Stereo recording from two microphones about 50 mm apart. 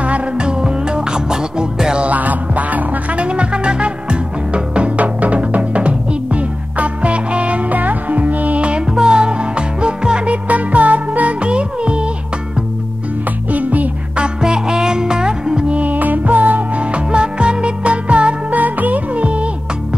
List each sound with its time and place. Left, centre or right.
0.0 s music: right
2.0 s music: right
13.5 s music: right
14.1 s music: centre
15.8 s music: right